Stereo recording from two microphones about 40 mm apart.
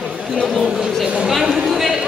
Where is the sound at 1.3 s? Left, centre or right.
Centre.